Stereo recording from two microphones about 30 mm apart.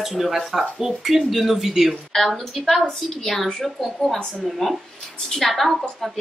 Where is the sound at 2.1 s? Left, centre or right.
Centre.